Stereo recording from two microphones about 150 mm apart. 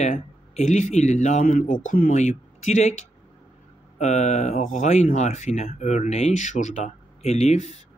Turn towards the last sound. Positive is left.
turn(degrees=50)  # may be behind; listen again after turning